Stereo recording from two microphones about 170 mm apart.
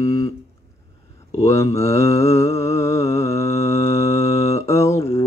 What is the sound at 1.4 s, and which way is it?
Mantra, 15° left (ahead or behind).